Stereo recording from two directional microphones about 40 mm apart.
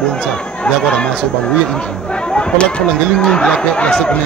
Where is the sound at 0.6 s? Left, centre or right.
Left.